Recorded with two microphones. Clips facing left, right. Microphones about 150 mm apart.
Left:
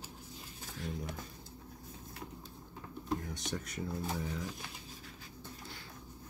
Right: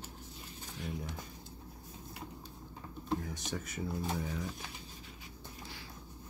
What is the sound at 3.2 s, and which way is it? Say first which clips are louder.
Speech: even; centre (ahead or behind).